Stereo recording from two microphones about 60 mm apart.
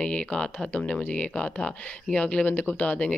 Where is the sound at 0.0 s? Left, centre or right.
Centre.